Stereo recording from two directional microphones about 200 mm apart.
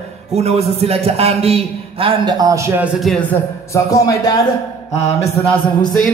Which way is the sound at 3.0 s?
Centre (ahead or behind).